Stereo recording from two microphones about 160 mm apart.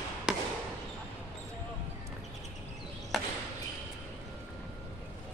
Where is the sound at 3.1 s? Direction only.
Centre (ahead or behind).